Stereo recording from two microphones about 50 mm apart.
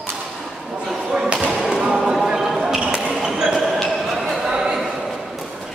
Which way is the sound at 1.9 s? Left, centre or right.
Centre.